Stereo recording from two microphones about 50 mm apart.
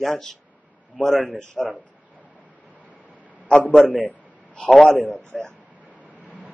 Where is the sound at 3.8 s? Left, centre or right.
Left.